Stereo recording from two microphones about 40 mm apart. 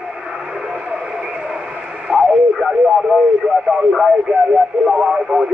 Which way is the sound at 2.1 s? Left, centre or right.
Centre.